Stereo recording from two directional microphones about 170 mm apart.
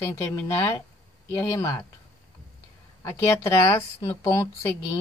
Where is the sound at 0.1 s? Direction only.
15° left (ahead or behind).